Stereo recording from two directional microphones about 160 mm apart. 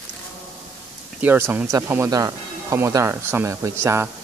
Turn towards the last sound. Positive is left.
turn(degrees=-15)  # may be behind; listen again after turning